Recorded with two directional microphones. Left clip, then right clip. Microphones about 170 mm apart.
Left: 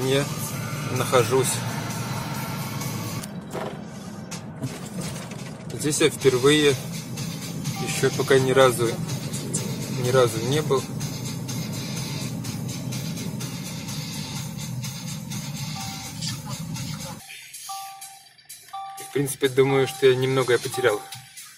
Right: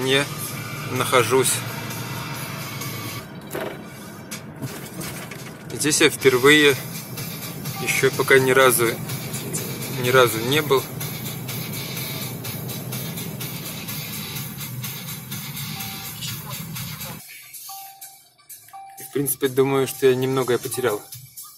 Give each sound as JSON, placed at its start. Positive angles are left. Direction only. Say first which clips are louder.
{"t": 0.0, "sound": "speech", "louder": "right 3 dB", "side_deg": 5}
{"t": 5.8, "sound": "speech", "louder": "right 4 dB", "side_deg": 5}
{"t": 7.8, "sound": "speech", "louder": "right 4 dB", "side_deg": 20}
{"t": 10.0, "sound": "speech", "louder": "right 4 dB", "side_deg": 10}
{"t": 19.1, "sound": "speech", "louder": "even", "side_deg": 0}